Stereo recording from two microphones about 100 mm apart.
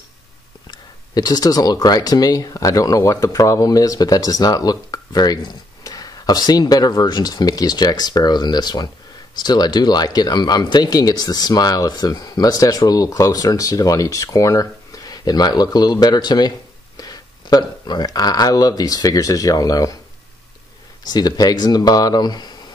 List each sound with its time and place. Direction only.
0.7 s speech: 40° left (ahead or behind)
21.1 s speech: 40° left (ahead or behind)